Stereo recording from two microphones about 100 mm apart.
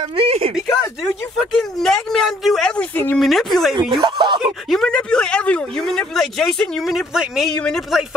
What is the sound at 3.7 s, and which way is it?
Speech, 50° right (ahead or behind).